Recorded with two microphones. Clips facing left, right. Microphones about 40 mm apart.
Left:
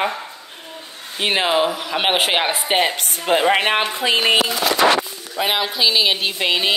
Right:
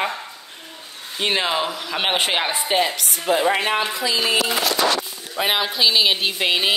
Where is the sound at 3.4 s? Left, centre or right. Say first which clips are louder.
Left 4 dB; left.